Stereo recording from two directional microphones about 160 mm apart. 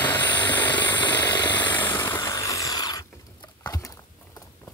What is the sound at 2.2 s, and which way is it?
Wood, 20° left (ahead or behind).